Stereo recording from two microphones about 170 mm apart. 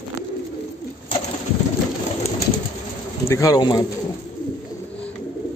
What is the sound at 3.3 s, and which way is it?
Speech, 20° left (ahead or behind).